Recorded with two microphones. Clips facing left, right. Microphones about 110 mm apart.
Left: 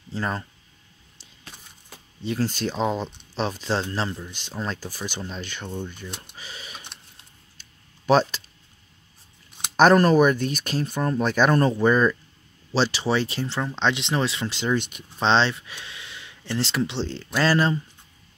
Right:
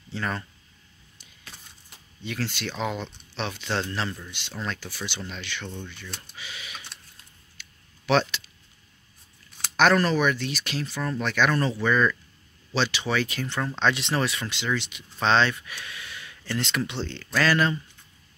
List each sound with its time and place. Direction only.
0.1 s speech: 30° left (ahead or behind)
2.2 s speech: 40° left (ahead or behind)
6.3 s typing: 40° left (ahead or behind)
6.8 s a sound: 20° left (ahead or behind)
8.1 s speech: 40° left (ahead or behind)
9.8 s speech: 40° left (ahead or behind); by 14.5 s 25° left (ahead or behind)
14.8 s speech: 45° left (ahead or behind)
15.1 s speech: 30° left (ahead or behind)